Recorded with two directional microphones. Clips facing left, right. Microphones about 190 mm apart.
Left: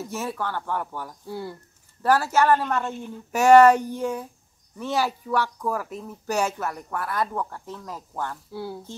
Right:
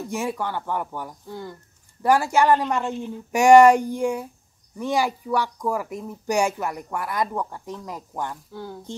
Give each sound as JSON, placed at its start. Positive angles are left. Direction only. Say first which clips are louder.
{"t": 0.1, "sound": "speech", "louder": "right 4 dB", "side_deg": -15}
{"t": 1.2, "sound": "speech", "louder": "left 2 dB", "side_deg": 10}
{"t": 2.0, "sound": "speech", "louder": "right 2 dB", "side_deg": -15}
{"t": 8.5, "sound": "speech", "louder": "left 5 dB", "side_deg": 10}